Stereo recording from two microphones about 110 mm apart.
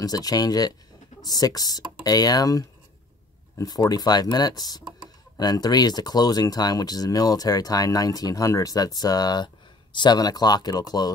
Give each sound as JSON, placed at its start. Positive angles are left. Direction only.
{"t": 0.0, "sound": "speech", "side_deg": 35}